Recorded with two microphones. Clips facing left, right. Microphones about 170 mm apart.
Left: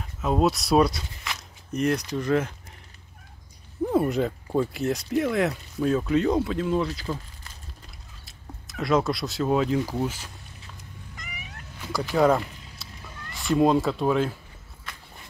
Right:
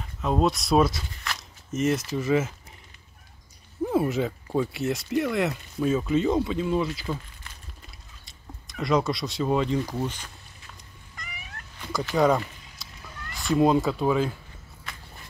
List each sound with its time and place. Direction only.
0.0 s speech: centre (ahead or behind)
3.9 s speech: centre (ahead or behind)
8.3 s speech: centre (ahead or behind)
11.1 s cat: 20° left (ahead or behind)
11.8 s speech: centre (ahead or behind)